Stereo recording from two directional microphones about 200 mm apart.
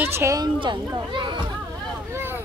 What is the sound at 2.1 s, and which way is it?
Vehicle, 10° right (ahead or behind).